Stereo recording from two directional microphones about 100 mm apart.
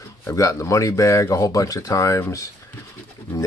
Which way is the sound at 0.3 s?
30° left (ahead or behind).